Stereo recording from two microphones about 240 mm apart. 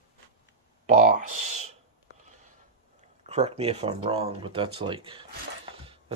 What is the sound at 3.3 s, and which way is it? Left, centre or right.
Speech, right.